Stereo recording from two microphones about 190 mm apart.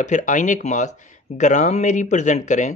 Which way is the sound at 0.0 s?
40° left (ahead or behind).